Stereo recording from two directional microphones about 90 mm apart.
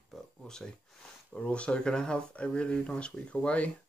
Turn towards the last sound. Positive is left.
turn(degrees=15)  # may be behind; listen again after turning